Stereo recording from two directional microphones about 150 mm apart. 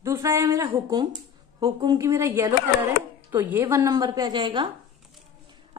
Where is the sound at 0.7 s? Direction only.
30° right (ahead or behind).